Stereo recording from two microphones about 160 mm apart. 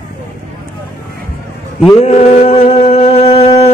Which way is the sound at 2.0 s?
40° left (ahead or behind).